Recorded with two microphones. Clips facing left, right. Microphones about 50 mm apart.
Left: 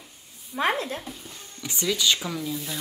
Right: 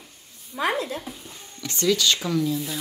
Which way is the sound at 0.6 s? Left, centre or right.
Left.